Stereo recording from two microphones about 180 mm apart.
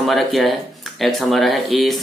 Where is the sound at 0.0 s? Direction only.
Centre (ahead or behind).